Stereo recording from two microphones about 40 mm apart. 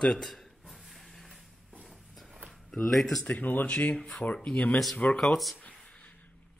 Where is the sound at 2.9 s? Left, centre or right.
Centre.